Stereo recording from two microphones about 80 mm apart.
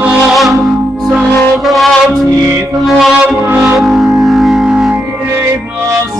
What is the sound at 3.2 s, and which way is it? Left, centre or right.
Music, right.